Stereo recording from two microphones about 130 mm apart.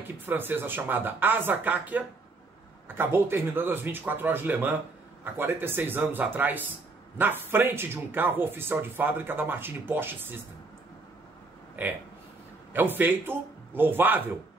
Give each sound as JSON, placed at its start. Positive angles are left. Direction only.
{"t": 0.3, "sound": "speech", "side_deg": -15}
{"t": 11.8, "sound": "speech", "side_deg": -15}